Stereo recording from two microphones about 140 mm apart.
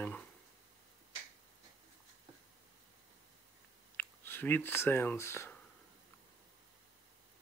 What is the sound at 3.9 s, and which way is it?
Speech, 15° left (ahead or behind).